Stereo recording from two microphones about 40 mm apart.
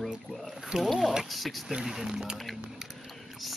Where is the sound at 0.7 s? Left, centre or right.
Centre.